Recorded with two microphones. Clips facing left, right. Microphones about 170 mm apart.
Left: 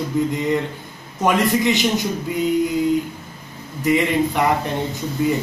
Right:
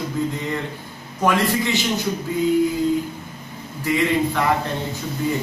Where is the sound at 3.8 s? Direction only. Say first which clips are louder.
Left 2 dB; 20° left (ahead or behind).